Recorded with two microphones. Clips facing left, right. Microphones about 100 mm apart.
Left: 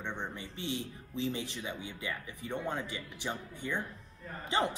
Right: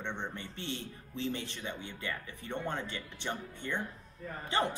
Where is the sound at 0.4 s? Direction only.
15° left (ahead or behind).